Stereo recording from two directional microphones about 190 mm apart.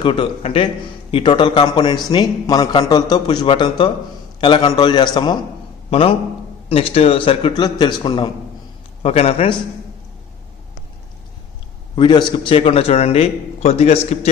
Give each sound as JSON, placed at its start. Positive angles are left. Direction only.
{"t": 0.0, "sound": "a man's voice", "side_deg": 25}
{"t": 11.9, "sound": "a man's voice", "side_deg": 25}